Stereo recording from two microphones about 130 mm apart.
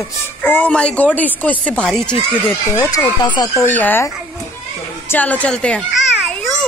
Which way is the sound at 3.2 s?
30° left (ahead or behind).